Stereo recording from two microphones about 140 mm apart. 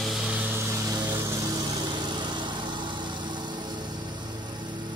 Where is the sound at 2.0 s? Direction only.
35° right (ahead or behind).